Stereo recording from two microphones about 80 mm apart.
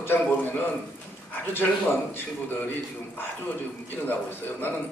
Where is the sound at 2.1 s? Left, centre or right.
Left.